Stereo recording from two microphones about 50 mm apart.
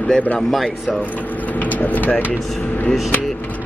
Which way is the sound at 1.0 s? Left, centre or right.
Left.